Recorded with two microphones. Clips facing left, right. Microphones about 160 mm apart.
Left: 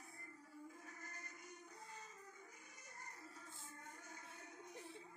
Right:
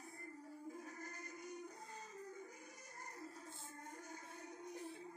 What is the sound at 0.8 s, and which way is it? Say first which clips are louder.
Music: right 6 dB; 35° right (ahead or behind).